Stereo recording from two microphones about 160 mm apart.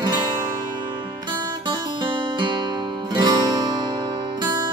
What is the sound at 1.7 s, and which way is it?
Music, 30° right (ahead or behind).